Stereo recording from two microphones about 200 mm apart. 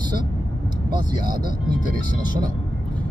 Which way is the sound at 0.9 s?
20° right (ahead or behind).